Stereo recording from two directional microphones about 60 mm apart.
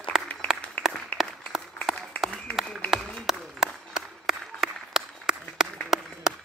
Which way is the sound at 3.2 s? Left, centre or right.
Centre.